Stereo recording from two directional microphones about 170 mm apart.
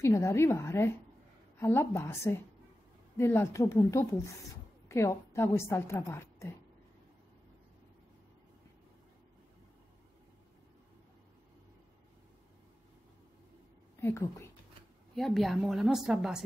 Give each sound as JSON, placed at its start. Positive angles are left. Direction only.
{"t": 0.0, "sound": "a woman's voice", "side_deg": 15}
{"t": 13.9, "sound": "speech", "side_deg": 15}
{"t": 15.1, "sound": "a woman's voice", "side_deg": 0}